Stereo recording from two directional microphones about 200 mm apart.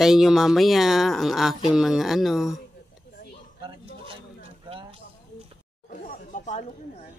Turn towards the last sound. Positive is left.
turn(degrees=35)  # may be behind; listen again after turning